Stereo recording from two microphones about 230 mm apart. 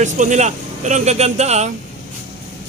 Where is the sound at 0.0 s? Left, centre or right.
Right.